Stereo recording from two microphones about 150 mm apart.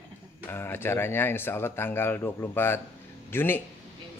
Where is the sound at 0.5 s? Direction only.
15° left (ahead or behind).